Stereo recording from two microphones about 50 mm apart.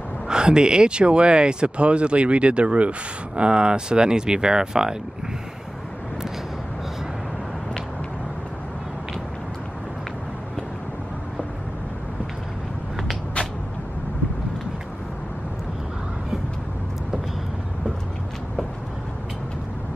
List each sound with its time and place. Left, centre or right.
0.3 s speech: centre